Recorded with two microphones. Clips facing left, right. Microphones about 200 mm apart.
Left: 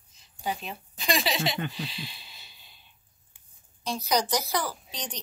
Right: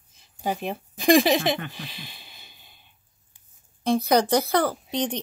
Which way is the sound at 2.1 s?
50° right (ahead or behind).